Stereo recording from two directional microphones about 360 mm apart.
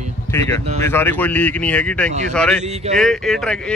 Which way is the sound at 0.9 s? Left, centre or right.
Centre.